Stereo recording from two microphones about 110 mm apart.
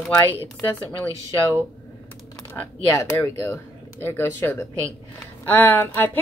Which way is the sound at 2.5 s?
20° left (ahead or behind).